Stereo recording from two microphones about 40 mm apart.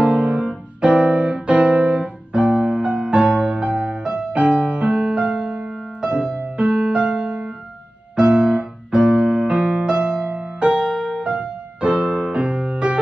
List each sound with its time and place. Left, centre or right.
0.0 s piano: right
0.7 s music: right
8.2 s keyboard: right